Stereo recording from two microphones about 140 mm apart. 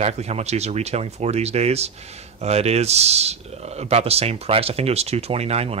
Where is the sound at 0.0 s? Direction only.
50° right (ahead or behind).